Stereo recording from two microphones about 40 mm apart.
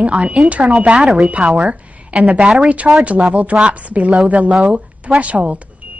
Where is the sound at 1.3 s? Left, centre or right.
Right.